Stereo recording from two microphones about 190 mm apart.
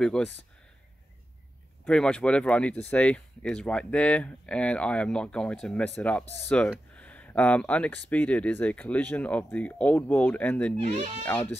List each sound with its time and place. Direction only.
0.0 s speech: 5° left (ahead or behind)
1.9 s speech: 5° left (ahead or behind)
10.8 s speech: 35° right (ahead or behind)